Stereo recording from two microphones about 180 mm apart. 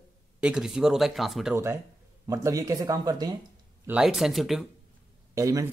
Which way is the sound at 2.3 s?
20° right (ahead or behind).